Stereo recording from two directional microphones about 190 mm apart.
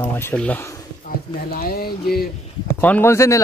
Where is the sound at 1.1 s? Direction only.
50° left (ahead or behind).